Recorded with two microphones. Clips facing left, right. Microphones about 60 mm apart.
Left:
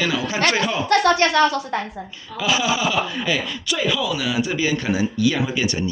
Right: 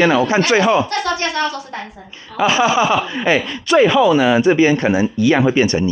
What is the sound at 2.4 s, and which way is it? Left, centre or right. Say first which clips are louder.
Speech: right 7 dB; right.